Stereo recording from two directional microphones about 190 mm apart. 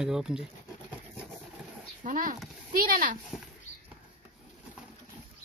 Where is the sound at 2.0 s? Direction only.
45° right (ahead or behind).